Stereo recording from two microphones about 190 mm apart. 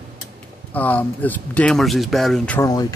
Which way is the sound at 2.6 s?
20° left (ahead or behind).